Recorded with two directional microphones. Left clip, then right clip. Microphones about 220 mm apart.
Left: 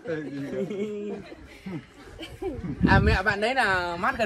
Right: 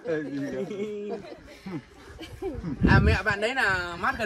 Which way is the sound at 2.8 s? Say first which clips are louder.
Left 2 dB; 15° left (ahead or behind).